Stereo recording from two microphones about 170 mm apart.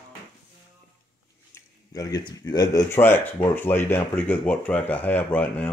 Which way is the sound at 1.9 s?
20° left (ahead or behind).